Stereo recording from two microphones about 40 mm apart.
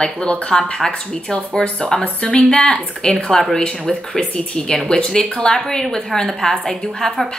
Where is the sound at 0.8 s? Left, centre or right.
Centre.